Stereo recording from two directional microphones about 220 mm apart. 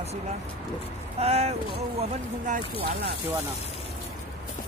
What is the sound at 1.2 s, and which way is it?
Speech, 30° right (ahead or behind).